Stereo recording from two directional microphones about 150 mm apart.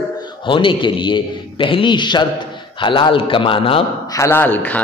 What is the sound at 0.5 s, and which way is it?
A man's voice, 35° left (ahead or behind).